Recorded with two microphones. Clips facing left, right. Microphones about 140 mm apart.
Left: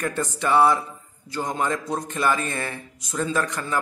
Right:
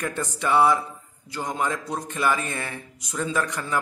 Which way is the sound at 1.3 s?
10° right (ahead or behind).